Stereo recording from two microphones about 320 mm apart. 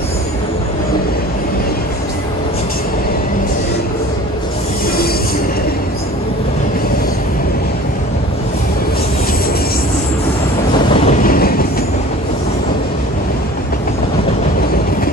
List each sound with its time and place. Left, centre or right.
11.1 s train: left